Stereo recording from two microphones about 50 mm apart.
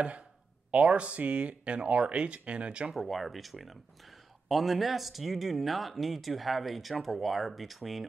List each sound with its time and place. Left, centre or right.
0.7 s speech: right
2.9 s speech: centre